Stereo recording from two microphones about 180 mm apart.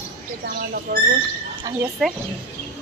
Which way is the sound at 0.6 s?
60° right (ahead or behind).